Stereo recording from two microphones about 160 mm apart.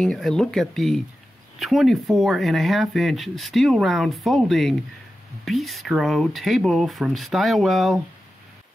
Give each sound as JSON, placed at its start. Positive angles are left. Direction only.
{"t": 0.0, "sound": "speech", "side_deg": 5}